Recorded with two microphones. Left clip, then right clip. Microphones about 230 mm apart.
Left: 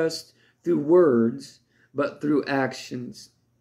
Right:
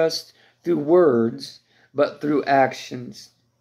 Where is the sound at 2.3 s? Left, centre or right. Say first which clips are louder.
Right 7 dB; right.